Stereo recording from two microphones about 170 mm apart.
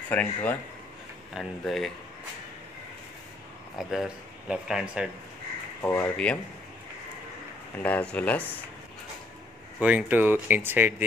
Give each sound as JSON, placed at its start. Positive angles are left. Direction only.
{"t": 0.1, "sound": "speech", "side_deg": 10}
{"t": 3.7, "sound": "speech", "side_deg": 0}
{"t": 5.8, "sound": "speech", "side_deg": 10}
{"t": 7.8, "sound": "speech", "side_deg": 5}
{"t": 9.8, "sound": "speech", "side_deg": -10}